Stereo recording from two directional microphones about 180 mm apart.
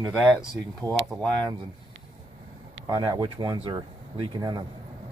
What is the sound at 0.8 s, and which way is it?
Speech, 5° left (ahead or behind).